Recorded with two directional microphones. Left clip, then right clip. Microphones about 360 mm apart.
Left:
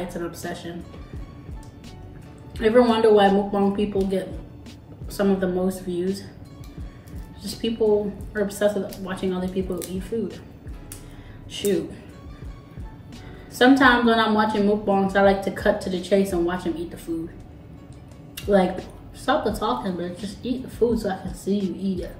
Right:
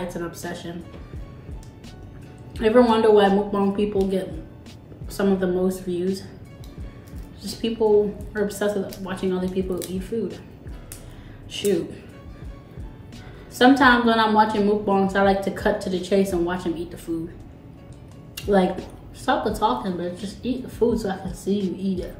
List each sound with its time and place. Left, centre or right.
0.1 s a woman's voice: centre
2.5 s a woman's voice: centre
7.4 s a woman's voice: centre
11.5 s a woman's voice: centre
13.6 s a woman's voice: centre
18.3 s a woman's voice: centre